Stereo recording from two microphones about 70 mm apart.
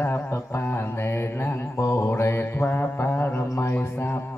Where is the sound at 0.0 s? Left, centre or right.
Left.